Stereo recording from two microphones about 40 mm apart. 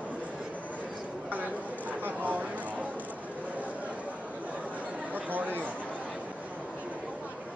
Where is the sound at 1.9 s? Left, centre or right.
Right.